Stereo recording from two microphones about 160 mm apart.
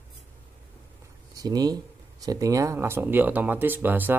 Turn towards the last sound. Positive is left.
turn(degrees=-10)  # may be behind; listen again after turning